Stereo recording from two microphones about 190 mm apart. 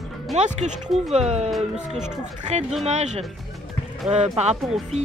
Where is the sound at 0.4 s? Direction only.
35° right (ahead or behind).